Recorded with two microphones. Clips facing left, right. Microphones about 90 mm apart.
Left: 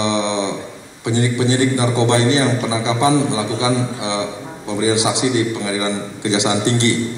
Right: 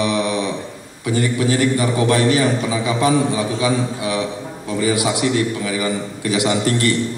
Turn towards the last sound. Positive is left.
turn(degrees=25)  # may be behind; listen again after turning